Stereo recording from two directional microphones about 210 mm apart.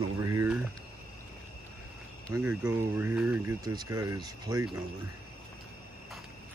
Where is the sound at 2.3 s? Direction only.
10° right (ahead or behind).